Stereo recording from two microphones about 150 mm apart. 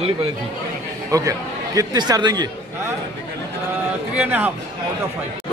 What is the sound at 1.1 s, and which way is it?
Speech, 20° right (ahead or behind).